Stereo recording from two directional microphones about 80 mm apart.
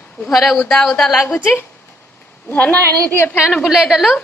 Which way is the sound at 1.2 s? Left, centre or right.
Left.